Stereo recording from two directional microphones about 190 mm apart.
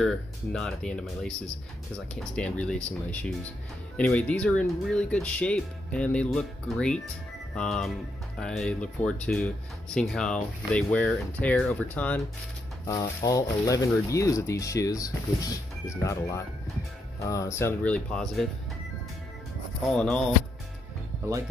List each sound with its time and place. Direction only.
0.0 s speech: 5° left (ahead or behind)
19.9 s speech: 5° left (ahead or behind)